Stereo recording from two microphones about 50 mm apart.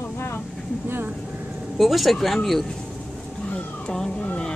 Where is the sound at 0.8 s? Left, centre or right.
Right.